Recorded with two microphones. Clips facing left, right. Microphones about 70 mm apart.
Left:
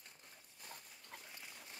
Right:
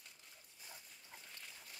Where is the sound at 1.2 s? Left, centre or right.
Centre.